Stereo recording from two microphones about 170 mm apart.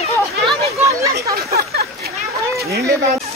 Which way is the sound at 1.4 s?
65° right (ahead or behind).